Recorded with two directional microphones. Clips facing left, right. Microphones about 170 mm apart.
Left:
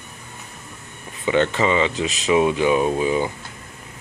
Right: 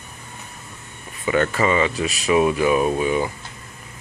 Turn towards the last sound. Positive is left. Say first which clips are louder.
# even
turn(degrees=30)  # may be behind; listen again after turning